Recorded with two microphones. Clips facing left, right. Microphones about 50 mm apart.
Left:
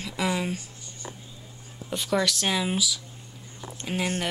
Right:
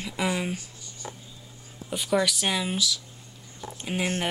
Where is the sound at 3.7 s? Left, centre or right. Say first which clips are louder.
Even; centre.